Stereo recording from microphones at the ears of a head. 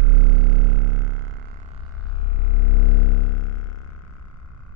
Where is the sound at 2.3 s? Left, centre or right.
Left.